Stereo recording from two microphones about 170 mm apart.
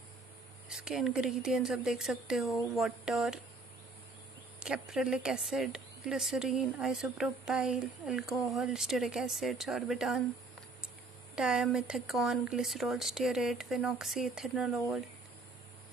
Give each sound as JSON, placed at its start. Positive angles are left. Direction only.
{"t": 0.7, "sound": "a woman's voice", "side_deg": -5}
{"t": 4.6, "sound": "a woman's voice", "side_deg": -5}
{"t": 11.3, "sound": "a woman's voice", "side_deg": -5}